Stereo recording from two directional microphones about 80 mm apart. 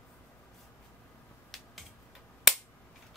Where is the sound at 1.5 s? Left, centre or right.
Centre.